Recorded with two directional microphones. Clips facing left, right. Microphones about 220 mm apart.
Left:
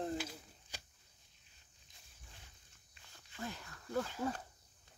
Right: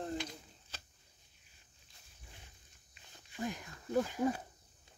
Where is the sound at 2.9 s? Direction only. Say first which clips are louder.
Right 3 dB; 15° right (ahead or behind).